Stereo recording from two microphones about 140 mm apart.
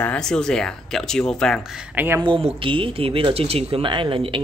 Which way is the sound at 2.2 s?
40° right (ahead or behind).